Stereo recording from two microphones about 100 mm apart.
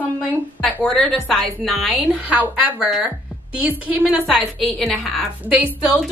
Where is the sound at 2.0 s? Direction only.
15° right (ahead or behind).